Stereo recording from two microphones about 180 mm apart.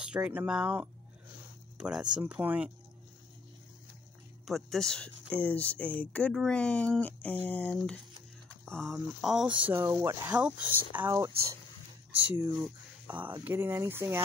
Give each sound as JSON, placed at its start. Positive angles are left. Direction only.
{"t": 0.0, "sound": "speech", "side_deg": -5}
{"t": 4.5, "sound": "speech", "side_deg": 0}